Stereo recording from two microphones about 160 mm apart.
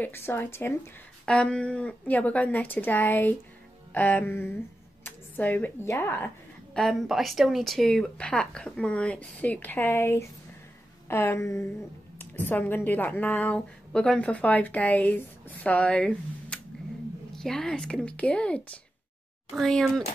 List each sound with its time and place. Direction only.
0.0 s a woman's voice: 15° left (ahead or behind)